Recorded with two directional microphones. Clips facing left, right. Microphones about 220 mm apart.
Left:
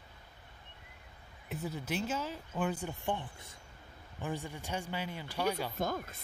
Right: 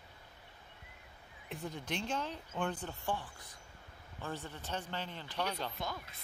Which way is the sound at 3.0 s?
20° left (ahead or behind).